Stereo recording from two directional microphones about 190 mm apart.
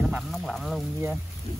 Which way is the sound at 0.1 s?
Centre (ahead or behind).